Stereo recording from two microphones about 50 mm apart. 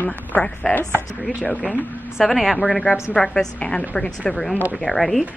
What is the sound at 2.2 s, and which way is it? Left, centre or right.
Speech, centre.